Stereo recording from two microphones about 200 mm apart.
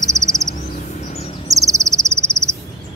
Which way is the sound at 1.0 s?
30° left (ahead or behind).